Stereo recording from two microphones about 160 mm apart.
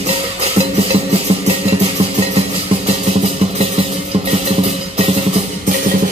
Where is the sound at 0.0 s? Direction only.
40° right (ahead or behind).